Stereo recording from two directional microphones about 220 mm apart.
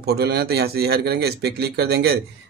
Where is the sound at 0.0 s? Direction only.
45° right (ahead or behind).